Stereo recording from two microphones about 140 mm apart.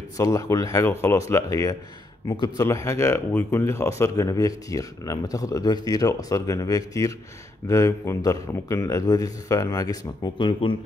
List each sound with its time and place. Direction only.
0.2 s speech: 25° left (ahead or behind)